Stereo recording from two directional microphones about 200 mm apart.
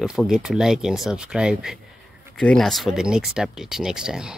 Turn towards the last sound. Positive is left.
turn(degrees=-5)  # may be behind; listen again after turning